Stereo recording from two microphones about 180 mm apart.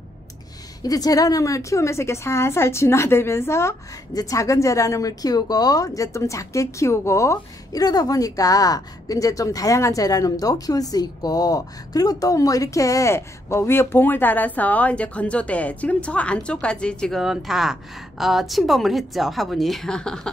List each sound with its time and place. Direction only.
0.8 s a woman's voice: 20° left (ahead or behind); by 20.2 s 5° left (ahead or behind)